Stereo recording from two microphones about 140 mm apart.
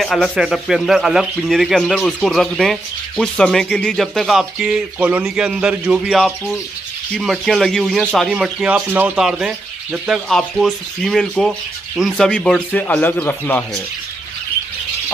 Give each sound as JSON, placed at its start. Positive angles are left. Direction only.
{"t": 0.0, "sound": "speech", "side_deg": 0}